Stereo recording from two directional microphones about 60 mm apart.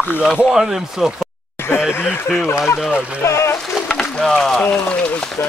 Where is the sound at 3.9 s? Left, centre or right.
Centre.